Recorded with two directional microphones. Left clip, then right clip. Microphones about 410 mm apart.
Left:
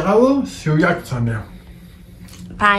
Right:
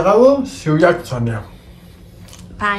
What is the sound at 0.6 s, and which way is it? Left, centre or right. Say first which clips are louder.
Speech: right 5 dB; right.